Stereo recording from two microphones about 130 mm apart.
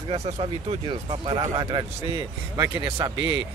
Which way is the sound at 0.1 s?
45° right (ahead or behind).